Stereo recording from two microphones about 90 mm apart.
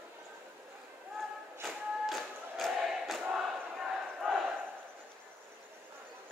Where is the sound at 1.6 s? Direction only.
Centre (ahead or behind).